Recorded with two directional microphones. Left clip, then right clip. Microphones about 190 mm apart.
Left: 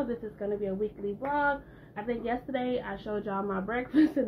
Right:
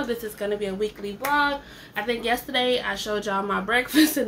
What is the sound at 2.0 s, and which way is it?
A woman's voice, 10° right (ahead or behind).